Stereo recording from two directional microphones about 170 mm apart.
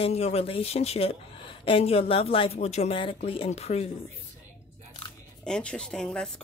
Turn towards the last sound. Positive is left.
turn(degrees=5)  # may be behind; listen again after turning